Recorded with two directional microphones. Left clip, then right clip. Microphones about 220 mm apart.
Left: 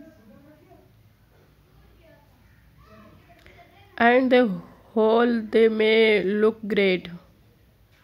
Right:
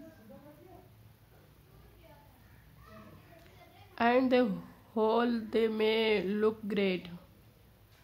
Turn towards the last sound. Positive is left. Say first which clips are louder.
# left 11 dB
turn(degrees=20)  # may be behind; listen again after turning